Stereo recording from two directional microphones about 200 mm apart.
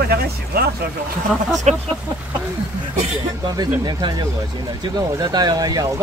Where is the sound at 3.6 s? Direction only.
20° right (ahead or behind).